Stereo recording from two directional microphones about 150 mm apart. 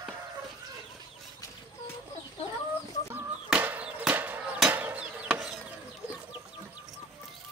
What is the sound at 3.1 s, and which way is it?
Chicken, 10° right (ahead or behind).